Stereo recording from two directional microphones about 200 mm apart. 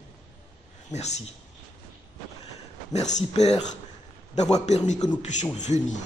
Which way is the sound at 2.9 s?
35° left (ahead or behind).